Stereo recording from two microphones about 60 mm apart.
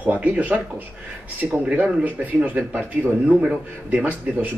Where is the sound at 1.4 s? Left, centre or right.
Centre.